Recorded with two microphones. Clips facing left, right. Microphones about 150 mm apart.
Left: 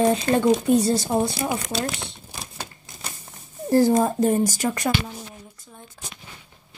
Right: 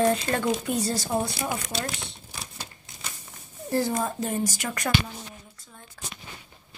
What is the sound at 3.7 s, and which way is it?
Speech, 40° left (ahead or behind).